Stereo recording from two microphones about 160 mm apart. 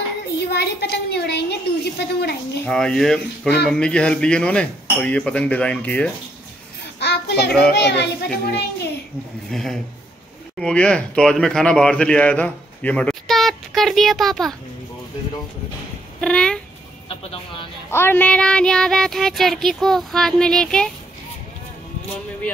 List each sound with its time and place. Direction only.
0.4 s a woman's voice: 90° left
2.6 s child singing: 5° left (ahead or behind)
3.6 s speech: 5° left (ahead or behind)
7.0 s a sound: 90° left
7.7 s a woman's voice: 90° left
9.5 s child singing: centre (ahead or behind)
10.6 s speech: 5° left (ahead or behind)
16.2 s child singing: 5° left (ahead or behind)
17.1 s speech: 35° left (ahead or behind)
17.8 s child singing: 15° left (ahead or behind)